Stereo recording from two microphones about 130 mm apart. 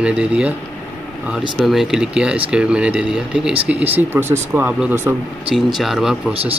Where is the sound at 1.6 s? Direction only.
Centre (ahead or behind).